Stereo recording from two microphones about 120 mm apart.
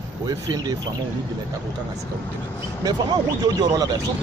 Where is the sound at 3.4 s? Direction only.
30° right (ahead or behind).